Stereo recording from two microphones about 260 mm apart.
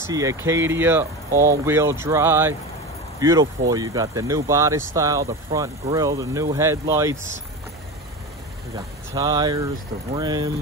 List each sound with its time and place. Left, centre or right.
0.0 s speech: centre
8.7 s speech: centre